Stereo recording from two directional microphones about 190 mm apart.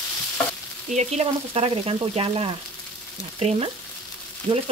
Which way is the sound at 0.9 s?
35° right (ahead or behind).